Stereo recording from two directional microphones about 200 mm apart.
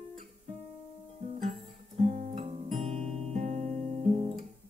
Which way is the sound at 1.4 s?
35° right (ahead or behind).